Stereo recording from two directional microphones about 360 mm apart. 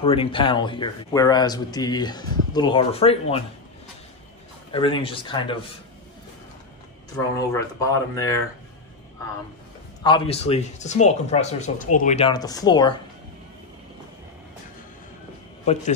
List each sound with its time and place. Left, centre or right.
0.0 s speech: centre
4.7 s speech: centre
7.3 s speech: centre
10.0 s speech: centre
15.6 s speech: centre